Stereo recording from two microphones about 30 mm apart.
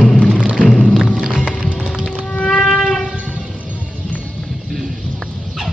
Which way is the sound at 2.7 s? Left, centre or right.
Centre.